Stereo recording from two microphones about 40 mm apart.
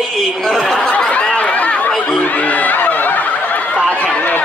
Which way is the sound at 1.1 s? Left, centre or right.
Left.